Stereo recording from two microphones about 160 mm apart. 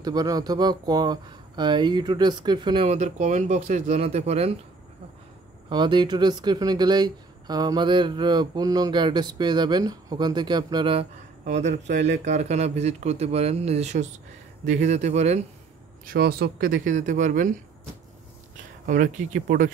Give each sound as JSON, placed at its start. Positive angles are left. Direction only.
{"t": 0.0, "sound": "speech", "side_deg": -25}
{"t": 5.7, "sound": "speech", "side_deg": -30}
{"t": 16.1, "sound": "speech", "side_deg": -75}
{"t": 18.9, "sound": "speech", "side_deg": -55}